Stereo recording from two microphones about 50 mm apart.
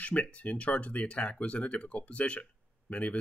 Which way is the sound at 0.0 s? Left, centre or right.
Left.